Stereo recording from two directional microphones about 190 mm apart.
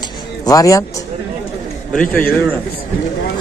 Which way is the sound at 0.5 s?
15° left (ahead or behind).